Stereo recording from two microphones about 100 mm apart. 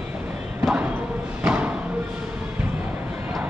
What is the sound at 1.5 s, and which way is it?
Thump, 15° right (ahead or behind).